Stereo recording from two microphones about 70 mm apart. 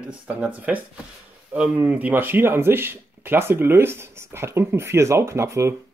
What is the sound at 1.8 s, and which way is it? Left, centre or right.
Speech, right.